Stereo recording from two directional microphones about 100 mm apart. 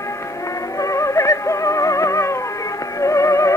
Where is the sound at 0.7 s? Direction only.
30° left (ahead or behind).